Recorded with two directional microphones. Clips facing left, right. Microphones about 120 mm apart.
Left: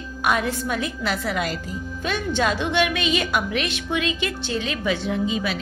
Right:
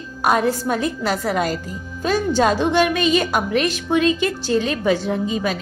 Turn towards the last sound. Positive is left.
turn(degrees=-45)  # may be behind; listen again after turning